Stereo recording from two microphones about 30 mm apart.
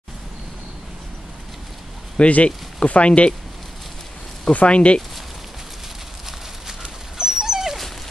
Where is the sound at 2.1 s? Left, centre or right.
Left.